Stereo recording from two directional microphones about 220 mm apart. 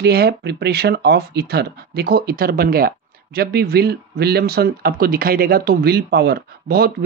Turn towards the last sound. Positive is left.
turn(degrees=-45)  # may be behind; listen again after turning